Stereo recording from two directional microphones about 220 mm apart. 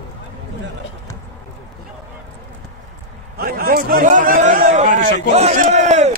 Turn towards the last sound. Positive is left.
turn(degrees=-30)  # may be behind; listen again after turning